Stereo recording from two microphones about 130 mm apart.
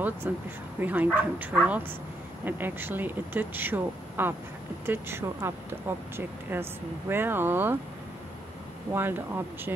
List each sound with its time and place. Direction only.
0.2 s speech: 15° right (ahead or behind)
8.9 s speech: 15° right (ahead or behind)